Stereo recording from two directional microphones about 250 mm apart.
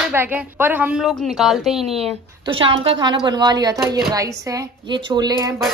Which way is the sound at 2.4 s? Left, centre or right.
Right.